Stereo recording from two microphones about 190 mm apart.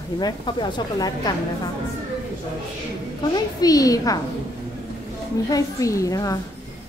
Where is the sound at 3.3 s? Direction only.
20° left (ahead or behind).